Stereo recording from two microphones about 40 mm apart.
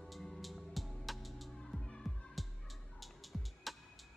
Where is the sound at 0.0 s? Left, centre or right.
Centre.